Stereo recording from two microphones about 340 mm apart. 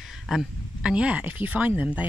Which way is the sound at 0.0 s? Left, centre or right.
Centre.